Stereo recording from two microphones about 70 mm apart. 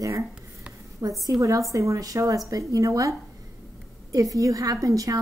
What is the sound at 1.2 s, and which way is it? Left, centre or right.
A woman's voice, right.